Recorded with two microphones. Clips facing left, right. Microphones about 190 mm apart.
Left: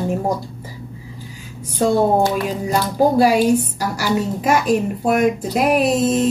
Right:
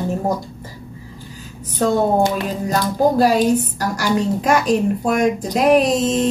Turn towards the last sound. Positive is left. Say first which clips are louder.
# left 1 dB
turn(degrees=5)  # may be behind; listen again after turning